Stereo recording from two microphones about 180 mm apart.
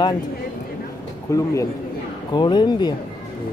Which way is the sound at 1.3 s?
15° left (ahead or behind).